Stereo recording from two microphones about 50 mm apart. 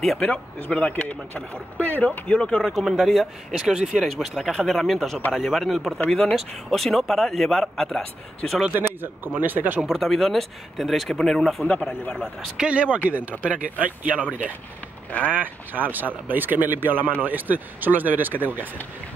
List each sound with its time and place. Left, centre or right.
0.2 s speech: left
2.7 s speech: centre
3.6 s speech: centre
3.9 s speech: centre
8.7 s speech: right
9.8 s speech: centre
11.6 s speech: left
12.5 s speech: right
15.0 s speech: left
15.3 s speech: right